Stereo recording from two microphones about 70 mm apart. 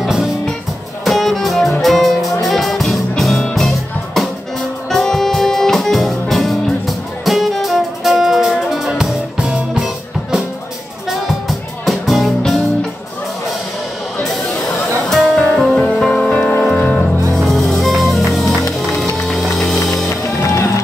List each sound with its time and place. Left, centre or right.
0.0 s music: centre
9.4 s music: centre
11.1 s music: centre
15.0 s music: centre
17.3 s music: centre
20.1 s music: left